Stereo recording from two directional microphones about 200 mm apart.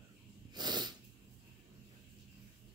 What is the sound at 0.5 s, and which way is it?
Sneeze, 20° right (ahead or behind).